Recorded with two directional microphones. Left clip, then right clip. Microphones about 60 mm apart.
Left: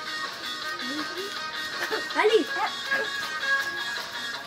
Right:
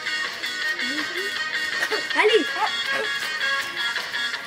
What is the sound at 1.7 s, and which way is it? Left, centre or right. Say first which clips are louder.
Speech: right 3 dB; right.